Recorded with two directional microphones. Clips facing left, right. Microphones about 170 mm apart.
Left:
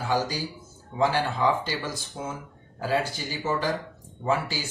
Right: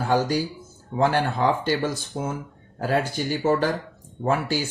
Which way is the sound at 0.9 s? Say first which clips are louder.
Right 3 dB; 55° right (ahead or behind).